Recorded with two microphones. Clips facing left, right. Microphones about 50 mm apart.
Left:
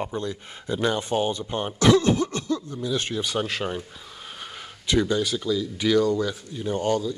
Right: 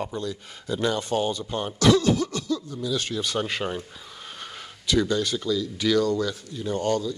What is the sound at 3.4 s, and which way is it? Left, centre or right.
Speech, centre.